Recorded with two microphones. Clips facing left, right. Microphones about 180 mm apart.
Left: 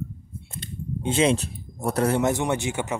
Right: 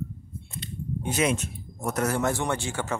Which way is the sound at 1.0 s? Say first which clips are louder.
Left 5 dB; 30° left (ahead or behind).